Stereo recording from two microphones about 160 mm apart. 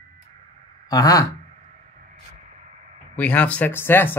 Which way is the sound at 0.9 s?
20° left (ahead or behind).